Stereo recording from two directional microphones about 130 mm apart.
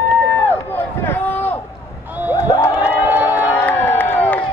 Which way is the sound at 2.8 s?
15° right (ahead or behind).